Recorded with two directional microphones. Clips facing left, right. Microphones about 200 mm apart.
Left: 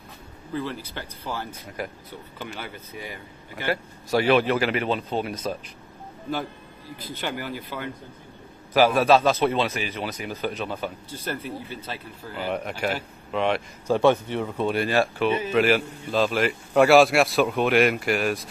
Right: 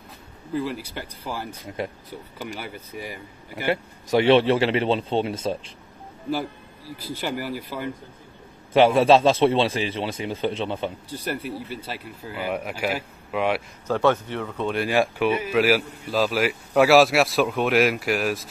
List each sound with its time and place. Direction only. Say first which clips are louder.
0.5 s a man's voice: right 3 dB; 5° right (ahead or behind); by 5.7 s 25° right (ahead or behind)
7.0 s speech: right 3 dB; 10° right (ahead or behind)
8.7 s a man's voice: right 2 dB; 25° right (ahead or behind)
11.1 s speech: right 2 dB; 15° right (ahead or behind)
13.8 s speech: left 2 dB; 10° left (ahead or behind)
14.9 s a man's voice: right 1 dB; 10° right (ahead or behind)